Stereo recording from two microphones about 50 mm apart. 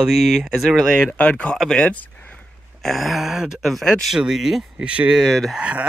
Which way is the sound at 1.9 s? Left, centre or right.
Left.